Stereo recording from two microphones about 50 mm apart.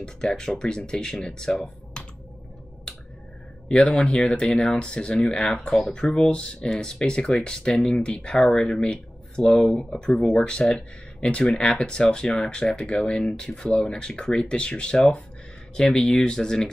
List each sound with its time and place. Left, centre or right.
0.0 s speech: centre
3.6 s speech: centre